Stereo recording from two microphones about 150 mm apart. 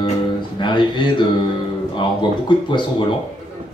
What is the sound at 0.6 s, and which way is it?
Speech, 30° left (ahead or behind).